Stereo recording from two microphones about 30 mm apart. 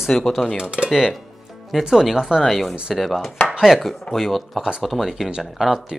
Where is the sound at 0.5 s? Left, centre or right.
Right.